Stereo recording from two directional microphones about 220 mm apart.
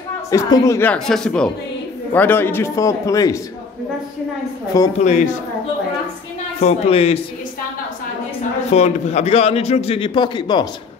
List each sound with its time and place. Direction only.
0.3 s a woman's voice: 15° left (ahead or behind)
4.9 s a man's voice: 30° left (ahead or behind)
6.6 s a man's voice: 30° left (ahead or behind)
8.7 s a man's voice: 30° left (ahead or behind)